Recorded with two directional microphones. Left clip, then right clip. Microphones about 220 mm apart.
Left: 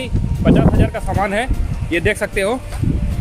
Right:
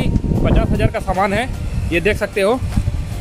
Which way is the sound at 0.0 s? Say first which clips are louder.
Even; 25° right (ahead or behind).